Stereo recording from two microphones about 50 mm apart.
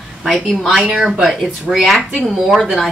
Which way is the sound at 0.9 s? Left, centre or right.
Centre.